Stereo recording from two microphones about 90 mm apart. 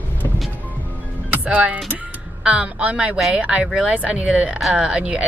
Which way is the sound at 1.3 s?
15° right (ahead or behind).